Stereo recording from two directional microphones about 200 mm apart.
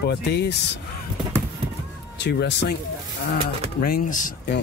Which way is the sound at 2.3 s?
60° left (ahead or behind).